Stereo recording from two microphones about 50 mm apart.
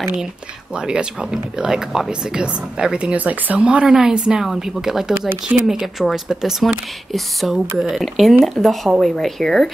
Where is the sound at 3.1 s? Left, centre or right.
Right.